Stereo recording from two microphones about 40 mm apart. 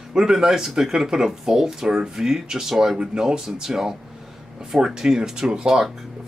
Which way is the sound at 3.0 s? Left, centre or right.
Centre.